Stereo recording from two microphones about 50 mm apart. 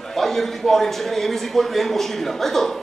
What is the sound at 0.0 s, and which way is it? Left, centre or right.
A man's voice, centre.